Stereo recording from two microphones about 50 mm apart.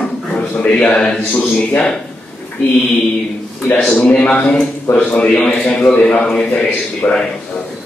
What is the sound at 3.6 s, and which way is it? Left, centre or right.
Speech, left.